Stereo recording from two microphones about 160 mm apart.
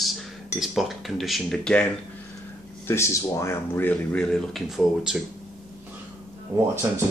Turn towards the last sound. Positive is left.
turn(degrees=-15)  # may be behind; listen again after turning